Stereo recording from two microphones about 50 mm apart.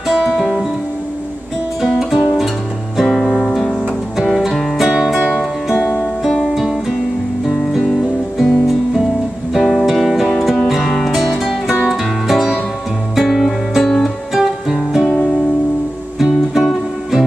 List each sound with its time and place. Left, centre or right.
0.1 s music: centre
1.9 s music: centre
3.1 s music: centre
5.9 s music: centre
15.1 s music: centre
16.2 s music: centre